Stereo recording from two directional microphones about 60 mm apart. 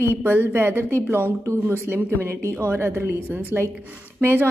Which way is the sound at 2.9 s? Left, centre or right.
Right.